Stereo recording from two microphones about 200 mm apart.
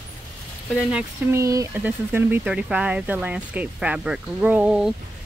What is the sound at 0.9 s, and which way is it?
Speech, 15° right (ahead or behind).